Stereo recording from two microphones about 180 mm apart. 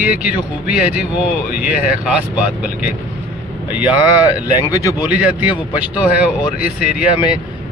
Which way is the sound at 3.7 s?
10° right (ahead or behind).